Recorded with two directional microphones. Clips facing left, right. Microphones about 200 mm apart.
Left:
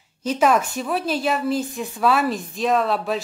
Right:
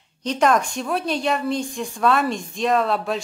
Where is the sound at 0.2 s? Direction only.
5° left (ahead or behind).